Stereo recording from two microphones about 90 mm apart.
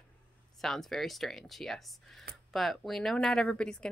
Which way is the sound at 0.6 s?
5° left (ahead or behind).